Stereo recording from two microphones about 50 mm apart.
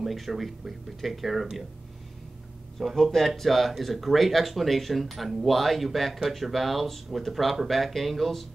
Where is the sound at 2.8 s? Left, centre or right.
Centre.